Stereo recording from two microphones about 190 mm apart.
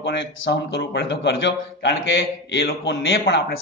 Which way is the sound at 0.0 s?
60° left (ahead or behind).